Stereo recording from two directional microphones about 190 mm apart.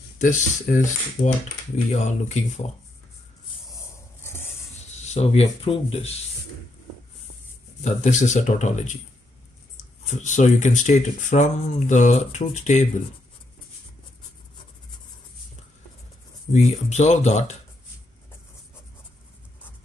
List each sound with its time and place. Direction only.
0.2 s speech: 40° left (ahead or behind)
4.2 s a sound: 10° left (ahead or behind)
4.9 s speech: 35° left (ahead or behind)
7.8 s speech: 40° left (ahead or behind)
10.0 s speech: 40° left (ahead or behind)
16.5 s speech: 35° left (ahead or behind)